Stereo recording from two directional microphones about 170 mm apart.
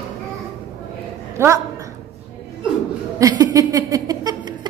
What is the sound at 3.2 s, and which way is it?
Laughter, 20° right (ahead or behind).